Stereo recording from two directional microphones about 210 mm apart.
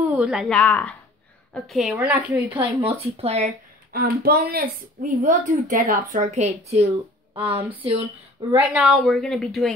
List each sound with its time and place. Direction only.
0.0 s a woman's voice: 5° right (ahead or behind)
2.8 s speech: 30° right (ahead or behind)
3.9 s a woman's voice: 45° right (ahead or behind); by 6.9 s 30° right (ahead or behind)
7.3 s a woman's voice: 10° right (ahead or behind)